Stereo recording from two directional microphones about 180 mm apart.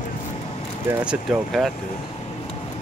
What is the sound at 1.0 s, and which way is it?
Speech, 5° right (ahead or behind).